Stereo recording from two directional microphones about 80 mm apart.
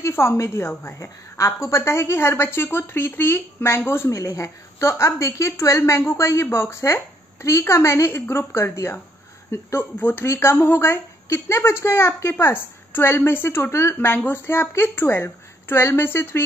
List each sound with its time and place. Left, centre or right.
0.0 s a woman's voice: left